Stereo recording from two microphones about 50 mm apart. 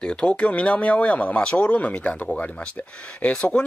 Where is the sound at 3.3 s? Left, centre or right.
Centre.